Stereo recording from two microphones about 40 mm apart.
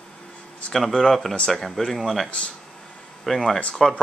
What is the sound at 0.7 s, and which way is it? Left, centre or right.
Speech, centre.